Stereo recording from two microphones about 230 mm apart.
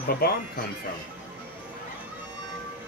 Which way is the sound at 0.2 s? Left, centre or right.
Left.